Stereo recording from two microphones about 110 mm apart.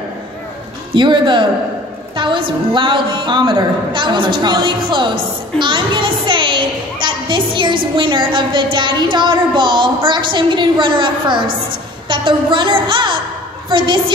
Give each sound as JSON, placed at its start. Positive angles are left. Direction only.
{"t": 0.9, "sound": "a woman's voice", "side_deg": -45}